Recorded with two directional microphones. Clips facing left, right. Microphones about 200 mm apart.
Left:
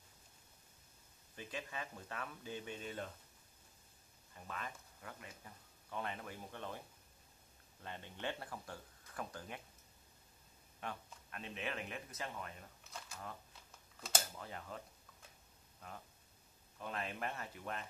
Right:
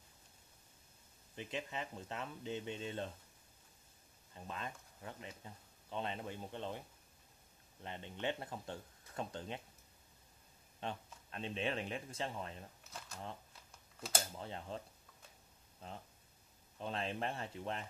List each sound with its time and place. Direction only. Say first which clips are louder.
1.3 s speech: right 3 dB; 20° right (ahead or behind)
4.3 s speech: right 2 dB; 25° right (ahead or behind)
7.8 s speech: right 3 dB; 20° right (ahead or behind)
10.8 s speech: right 3 dB; 25° right (ahead or behind)
14.3 s speech: right 4 dB; 25° right (ahead or behind)
15.8 s speech: right 3 dB; 25° right (ahead or behind)